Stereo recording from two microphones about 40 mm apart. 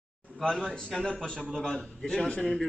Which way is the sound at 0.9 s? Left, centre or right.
Left.